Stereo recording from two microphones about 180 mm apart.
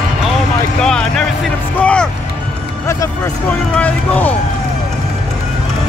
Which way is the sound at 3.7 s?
10° left (ahead or behind).